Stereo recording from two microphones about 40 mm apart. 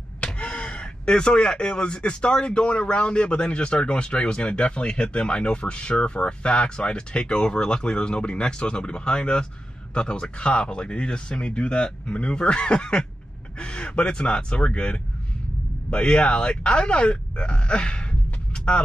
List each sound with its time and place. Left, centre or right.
0.2 s speech: left